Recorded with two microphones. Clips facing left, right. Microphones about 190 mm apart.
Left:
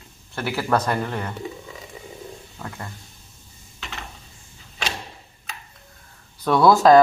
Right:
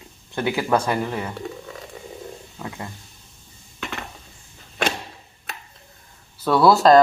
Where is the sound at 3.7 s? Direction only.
55° right (ahead or behind).